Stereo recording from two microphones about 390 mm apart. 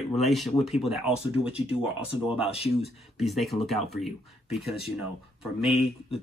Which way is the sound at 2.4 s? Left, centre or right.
Centre.